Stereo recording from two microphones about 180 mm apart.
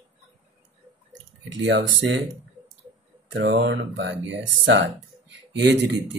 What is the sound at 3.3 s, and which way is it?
Speech, 85° right.